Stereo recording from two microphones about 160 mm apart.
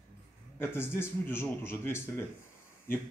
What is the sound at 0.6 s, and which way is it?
Speech, 15° left (ahead or behind).